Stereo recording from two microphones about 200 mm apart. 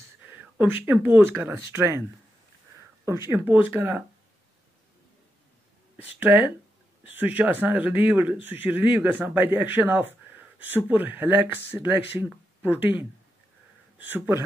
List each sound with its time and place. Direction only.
0.2 s speech: 10° right (ahead or behind)
3.1 s speech: 10° right (ahead or behind)
6.1 s speech: 5° right (ahead or behind)